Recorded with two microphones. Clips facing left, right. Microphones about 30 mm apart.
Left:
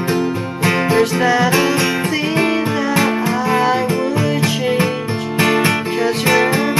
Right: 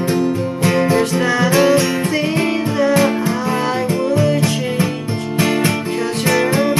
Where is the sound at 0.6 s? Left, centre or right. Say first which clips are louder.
Left 1 dB; centre.